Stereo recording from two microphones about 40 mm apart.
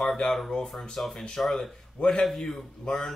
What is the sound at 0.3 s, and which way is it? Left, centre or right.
Speech, centre.